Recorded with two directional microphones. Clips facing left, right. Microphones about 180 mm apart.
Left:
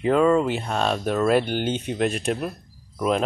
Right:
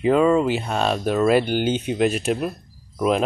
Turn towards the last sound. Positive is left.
turn(degrees=-10)  # may be behind; listen again after turning